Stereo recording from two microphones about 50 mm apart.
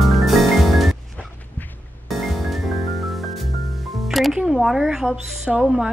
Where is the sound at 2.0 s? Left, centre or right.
Centre.